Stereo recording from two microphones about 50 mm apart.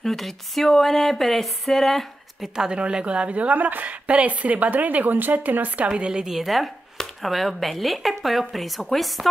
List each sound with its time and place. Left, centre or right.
0.0 s speech: centre
2.5 s a woman's voice: centre; by 5.9 s right
5.9 s a woman's voice: centre
6.3 s speech: centre